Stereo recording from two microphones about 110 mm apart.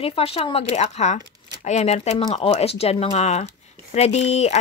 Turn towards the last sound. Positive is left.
turn(degrees=85)